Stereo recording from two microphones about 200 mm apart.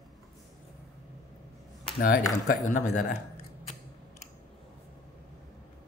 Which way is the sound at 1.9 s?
45° left (ahead or behind).